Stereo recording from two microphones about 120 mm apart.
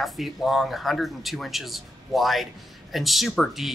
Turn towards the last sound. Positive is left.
turn(degrees=0)  # may be behind; listen again after turning